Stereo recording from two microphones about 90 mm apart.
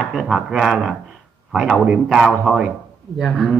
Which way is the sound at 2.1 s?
Centre (ahead or behind).